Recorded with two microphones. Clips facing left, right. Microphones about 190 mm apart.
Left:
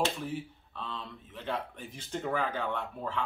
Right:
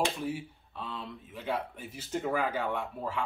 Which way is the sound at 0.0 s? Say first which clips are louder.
Right 1 dB; 10° right (ahead or behind).